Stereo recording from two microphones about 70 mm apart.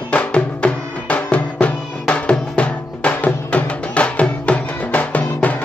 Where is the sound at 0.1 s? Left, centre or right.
Centre.